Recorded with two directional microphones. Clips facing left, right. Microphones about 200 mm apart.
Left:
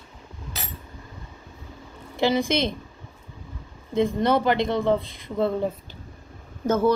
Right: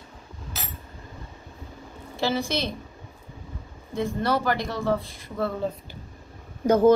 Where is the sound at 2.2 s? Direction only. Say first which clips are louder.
Left 4 dB; 20° left (ahead or behind).